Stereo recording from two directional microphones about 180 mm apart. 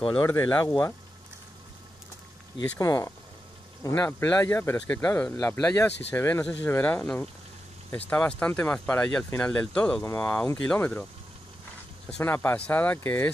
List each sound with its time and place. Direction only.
0.3 s speech: 10° left (ahead or behind)
2.5 s speech: 20° left (ahead or behind)
12.2 s speech: 10° left (ahead or behind)